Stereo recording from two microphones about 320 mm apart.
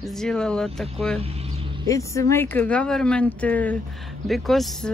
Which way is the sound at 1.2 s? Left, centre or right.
Centre.